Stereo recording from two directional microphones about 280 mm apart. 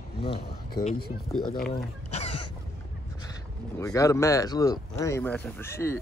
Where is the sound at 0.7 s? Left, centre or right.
Left.